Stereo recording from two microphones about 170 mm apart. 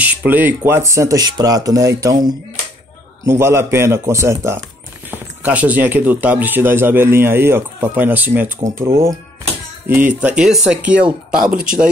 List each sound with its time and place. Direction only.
0.0 s speech: 10° right (ahead or behind)